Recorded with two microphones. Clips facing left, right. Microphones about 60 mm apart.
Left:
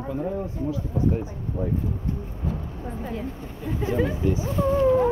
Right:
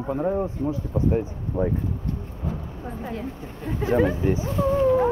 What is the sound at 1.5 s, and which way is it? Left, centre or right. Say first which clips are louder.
Speech: right 5 dB; right.